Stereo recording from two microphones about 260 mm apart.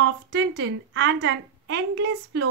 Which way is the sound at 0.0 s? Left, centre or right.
Right.